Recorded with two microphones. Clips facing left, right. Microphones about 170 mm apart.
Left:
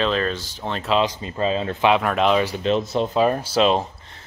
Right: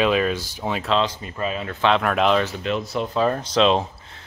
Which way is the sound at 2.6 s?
25° left (ahead or behind).